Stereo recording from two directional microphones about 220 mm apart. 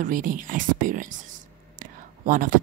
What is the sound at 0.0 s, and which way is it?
A woman's voice, 35° right (ahead or behind).